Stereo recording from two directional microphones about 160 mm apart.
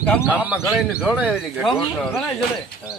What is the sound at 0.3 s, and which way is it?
A man's voice, 10° right (ahead or behind).